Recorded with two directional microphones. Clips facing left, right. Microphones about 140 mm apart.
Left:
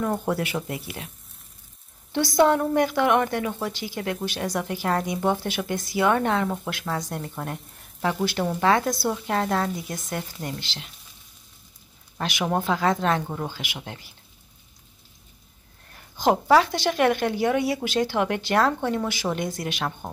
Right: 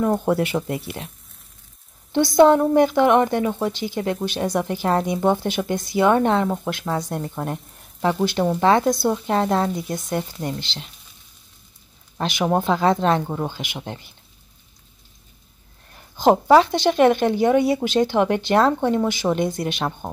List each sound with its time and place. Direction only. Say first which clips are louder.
0.0 s speech: right 6 dB; 25° right (ahead or behind)
2.1 s speech: right 6 dB; 25° right (ahead or behind)
12.2 s speech: right 5 dB; 25° right (ahead or behind)
16.2 s speech: right 4 dB; 25° right (ahead or behind)